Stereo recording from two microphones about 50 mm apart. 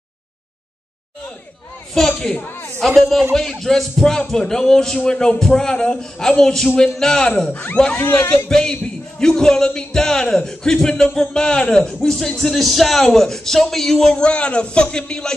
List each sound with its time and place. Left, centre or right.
2.0 s speech: centre
2.4 s a sound: left
2.9 s a man's voice: centre
7.4 s speech: left
8.5 s speech: centre